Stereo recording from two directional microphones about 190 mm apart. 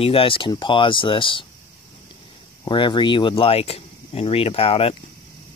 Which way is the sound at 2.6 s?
25° left (ahead or behind).